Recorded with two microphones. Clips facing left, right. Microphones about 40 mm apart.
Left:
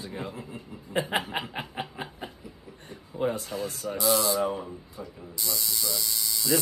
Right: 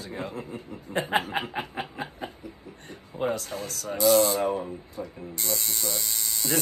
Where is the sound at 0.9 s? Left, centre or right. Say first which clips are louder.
Even; right.